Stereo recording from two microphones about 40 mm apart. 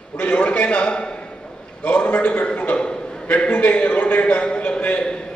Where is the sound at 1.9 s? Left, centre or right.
Left.